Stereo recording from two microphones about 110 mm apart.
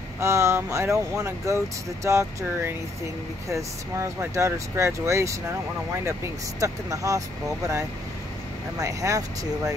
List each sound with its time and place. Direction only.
0.2 s speech: 25° right (ahead or behind)
6.6 s speech: 30° right (ahead or behind)